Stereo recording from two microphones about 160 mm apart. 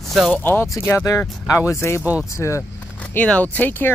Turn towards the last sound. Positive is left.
turn(degrees=10)  # may be behind; listen again after turning